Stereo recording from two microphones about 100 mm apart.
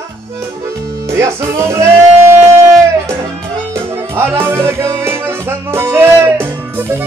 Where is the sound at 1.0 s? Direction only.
30° right (ahead or behind).